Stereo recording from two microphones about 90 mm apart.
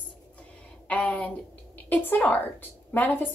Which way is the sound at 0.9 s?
15° left (ahead or behind).